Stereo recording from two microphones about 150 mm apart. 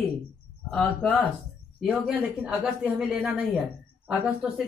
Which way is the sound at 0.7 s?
10° left (ahead or behind).